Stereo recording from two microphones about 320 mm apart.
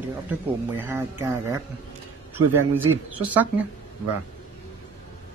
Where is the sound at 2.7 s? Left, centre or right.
Centre.